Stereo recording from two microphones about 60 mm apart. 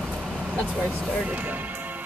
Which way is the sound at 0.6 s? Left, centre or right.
Centre.